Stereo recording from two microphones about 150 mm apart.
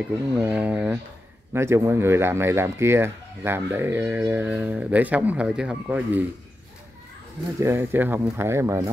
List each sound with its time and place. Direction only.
0.4 s speech: 10° right (ahead or behind)
7.6 s speech: 15° right (ahead or behind)